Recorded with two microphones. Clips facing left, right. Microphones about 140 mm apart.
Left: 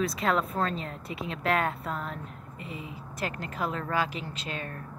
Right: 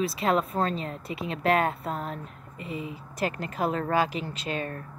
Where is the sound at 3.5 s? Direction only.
45° right (ahead or behind).